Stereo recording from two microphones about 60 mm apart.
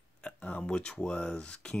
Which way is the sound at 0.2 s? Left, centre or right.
Centre.